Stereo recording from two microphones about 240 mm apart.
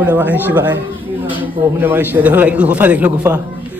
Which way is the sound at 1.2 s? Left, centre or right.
Left.